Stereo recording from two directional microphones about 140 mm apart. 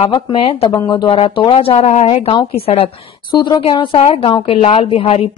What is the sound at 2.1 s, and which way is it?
A woman's voice, 40° left (ahead or behind).